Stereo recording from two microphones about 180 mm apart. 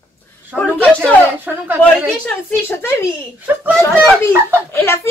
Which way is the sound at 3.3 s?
10° right (ahead or behind).